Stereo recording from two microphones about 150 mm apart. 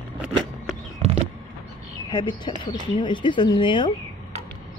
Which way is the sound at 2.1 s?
35° left (ahead or behind).